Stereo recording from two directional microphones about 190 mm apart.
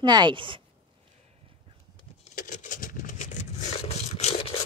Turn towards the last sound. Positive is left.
turn(degrees=35)  # may be behind; listen again after turning